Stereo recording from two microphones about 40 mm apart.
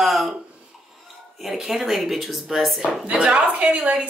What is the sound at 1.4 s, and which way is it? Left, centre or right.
Speech, centre.